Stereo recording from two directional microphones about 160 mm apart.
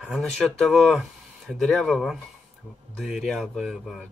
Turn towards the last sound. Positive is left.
turn(degrees=0)  # may be behind; listen again after turning